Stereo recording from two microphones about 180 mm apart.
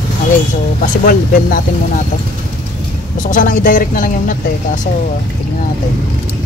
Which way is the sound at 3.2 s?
45° left (ahead or behind).